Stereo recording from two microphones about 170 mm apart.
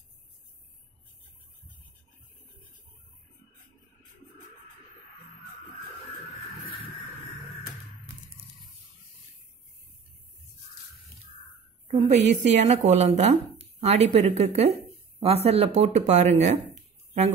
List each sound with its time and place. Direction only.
12.1 s speech: 45° right (ahead or behind)